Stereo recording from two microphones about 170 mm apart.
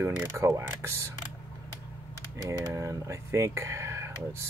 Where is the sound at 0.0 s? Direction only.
15° right (ahead or behind).